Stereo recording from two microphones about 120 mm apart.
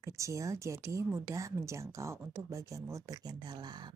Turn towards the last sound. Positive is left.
turn(degrees=-35)  # may be behind; listen again after turning